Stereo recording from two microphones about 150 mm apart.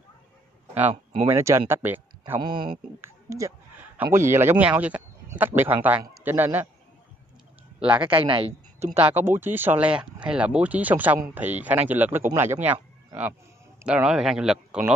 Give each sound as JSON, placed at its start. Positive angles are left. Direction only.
{"t": 1.3, "sound": "speech", "side_deg": -20}
{"t": 2.4, "sound": "a man's voice", "side_deg": -30}
{"t": 7.8, "sound": "speech", "side_deg": -10}
{"t": 8.1, "sound": "a woman's voice", "side_deg": -40}
{"t": 9.0, "sound": "speech", "side_deg": -15}
{"t": 13.8, "sound": "speech", "side_deg": -5}